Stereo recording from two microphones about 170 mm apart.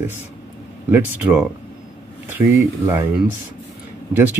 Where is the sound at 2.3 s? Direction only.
10° right (ahead or behind).